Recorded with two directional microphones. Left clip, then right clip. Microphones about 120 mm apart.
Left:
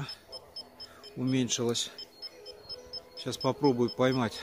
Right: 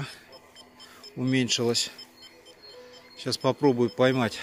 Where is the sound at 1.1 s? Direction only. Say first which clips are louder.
Right 5 dB; 20° right (ahead or behind).